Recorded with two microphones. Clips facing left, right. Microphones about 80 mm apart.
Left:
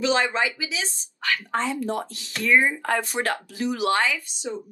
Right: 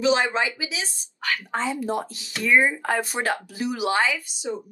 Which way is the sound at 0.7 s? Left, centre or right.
Left.